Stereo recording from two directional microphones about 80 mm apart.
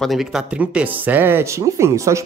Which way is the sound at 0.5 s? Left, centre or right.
Centre.